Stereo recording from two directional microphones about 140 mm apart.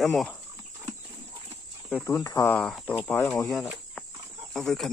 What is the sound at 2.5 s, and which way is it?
Speech, 5° left (ahead or behind).